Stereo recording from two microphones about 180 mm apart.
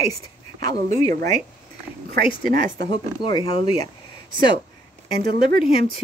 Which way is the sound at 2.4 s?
50° right (ahead or behind).